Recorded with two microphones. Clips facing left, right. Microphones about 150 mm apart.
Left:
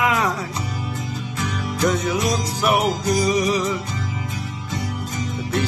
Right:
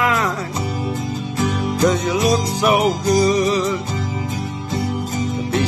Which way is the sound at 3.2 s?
10° left (ahead or behind).